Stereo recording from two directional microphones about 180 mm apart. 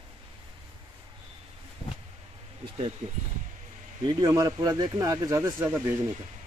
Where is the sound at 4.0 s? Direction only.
25° right (ahead or behind).